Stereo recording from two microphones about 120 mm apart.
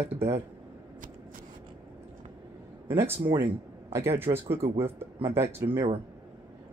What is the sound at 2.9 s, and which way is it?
Speech, 20° right (ahead or behind).